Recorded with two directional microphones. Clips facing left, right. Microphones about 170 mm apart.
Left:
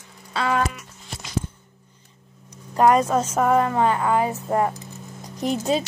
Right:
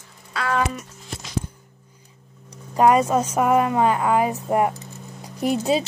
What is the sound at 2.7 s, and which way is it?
A woman's voice, 10° right (ahead or behind).